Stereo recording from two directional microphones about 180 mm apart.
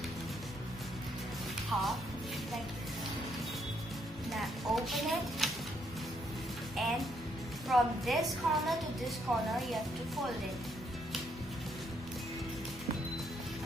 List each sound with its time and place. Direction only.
1.7 s music: centre (ahead or behind)
4.3 s a sound: centre (ahead or behind)
6.8 s music: centre (ahead or behind)
7.6 s a woman's voice: centre (ahead or behind)